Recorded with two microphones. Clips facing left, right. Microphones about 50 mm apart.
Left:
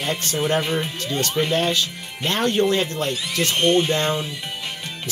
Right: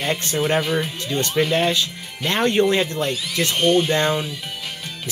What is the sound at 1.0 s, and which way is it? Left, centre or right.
Speech, centre.